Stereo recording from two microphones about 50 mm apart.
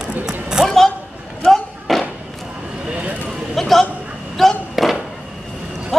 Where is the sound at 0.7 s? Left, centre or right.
Centre.